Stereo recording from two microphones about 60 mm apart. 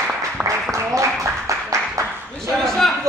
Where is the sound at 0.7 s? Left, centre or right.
Right.